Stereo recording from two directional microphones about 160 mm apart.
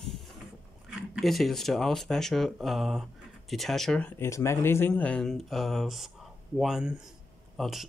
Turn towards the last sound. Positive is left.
turn(degrees=0)  # may be behind; listen again after turning